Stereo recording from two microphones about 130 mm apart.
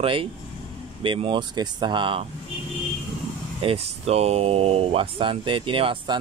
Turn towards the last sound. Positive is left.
turn(degrees=-40)  # may be behind; listen again after turning